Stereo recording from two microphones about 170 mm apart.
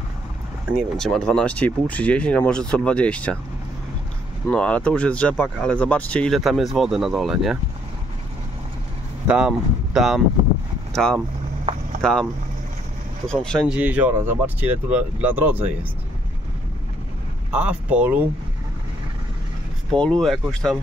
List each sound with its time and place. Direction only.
0.9 s speech: 5° left (ahead or behind)
4.5 s speech: 5° left (ahead or behind)
9.3 s speech: 5° right (ahead or behind)
13.3 s speech: 5° left (ahead or behind)
13.7 s speech: 10° right (ahead or behind)
17.5 s speech: 5° right (ahead or behind)
20.0 s speech: 5° left (ahead or behind)